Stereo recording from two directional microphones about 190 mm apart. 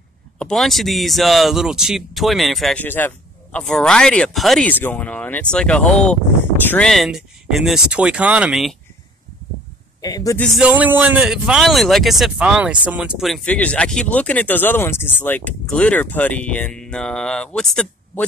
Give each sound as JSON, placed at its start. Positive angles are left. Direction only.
{"t": 0.4, "sound": "speech", "side_deg": 0}
{"t": 10.0, "sound": "a man's voice", "side_deg": 20}
{"t": 10.4, "sound": "speech", "side_deg": -5}